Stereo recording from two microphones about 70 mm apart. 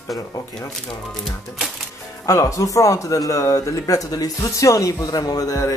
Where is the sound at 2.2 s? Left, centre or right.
Left.